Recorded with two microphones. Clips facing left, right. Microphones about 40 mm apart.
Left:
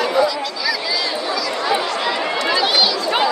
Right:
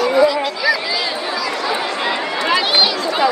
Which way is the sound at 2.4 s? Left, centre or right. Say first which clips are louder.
Right 2 dB; right.